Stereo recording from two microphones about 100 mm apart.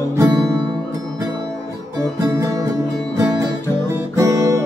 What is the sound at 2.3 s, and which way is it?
Music, 30° right (ahead or behind).